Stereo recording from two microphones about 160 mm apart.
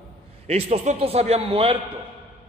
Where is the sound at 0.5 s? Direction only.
40° right (ahead or behind).